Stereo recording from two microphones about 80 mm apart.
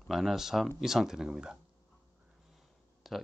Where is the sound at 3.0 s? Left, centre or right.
Centre.